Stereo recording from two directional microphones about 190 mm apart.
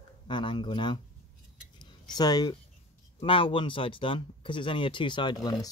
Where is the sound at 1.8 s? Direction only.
20° left (ahead or behind).